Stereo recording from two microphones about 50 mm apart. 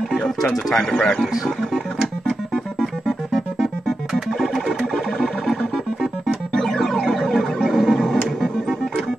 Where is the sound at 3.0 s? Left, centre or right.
Centre.